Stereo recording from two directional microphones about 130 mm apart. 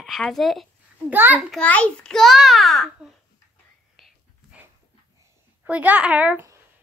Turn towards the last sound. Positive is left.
turn(degrees=-15)  # may be behind; listen again after turning